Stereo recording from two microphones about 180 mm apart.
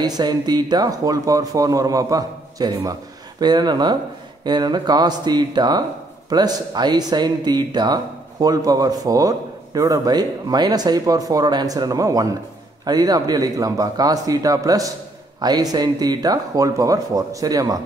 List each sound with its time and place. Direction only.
0.0 s speech: 25° right (ahead or behind)